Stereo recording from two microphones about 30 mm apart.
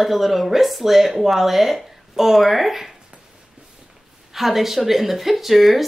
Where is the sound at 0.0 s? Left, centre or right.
Centre.